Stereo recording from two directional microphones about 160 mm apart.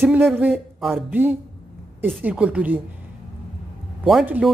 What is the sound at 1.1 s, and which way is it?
Speech, 15° right (ahead or behind).